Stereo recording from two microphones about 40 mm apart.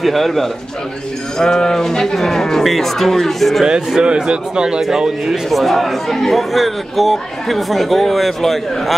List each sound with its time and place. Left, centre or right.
0.0 s speech: centre
1.4 s speech: centre
3.6 s a man's voice: right
4.8 s speech: centre
5.5 s speech: centre